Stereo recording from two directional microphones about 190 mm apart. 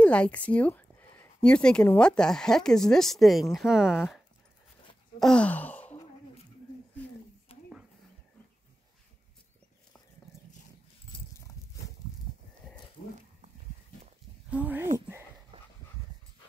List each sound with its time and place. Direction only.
0.0 s speech: 5° left (ahead or behind)
5.2 s gasp: 5° left (ahead or behind)
7.5 s a sound: 30° left (ahead or behind)
10.3 s a sound: 15° left (ahead or behind)
14.5 s speech: 10° right (ahead or behind)
15.5 s dog: 25° right (ahead or behind)